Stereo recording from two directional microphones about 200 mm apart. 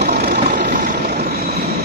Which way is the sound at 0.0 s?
50° right (ahead or behind).